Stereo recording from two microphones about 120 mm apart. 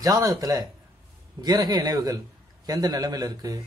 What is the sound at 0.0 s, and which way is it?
A man's voice, 30° right (ahead or behind).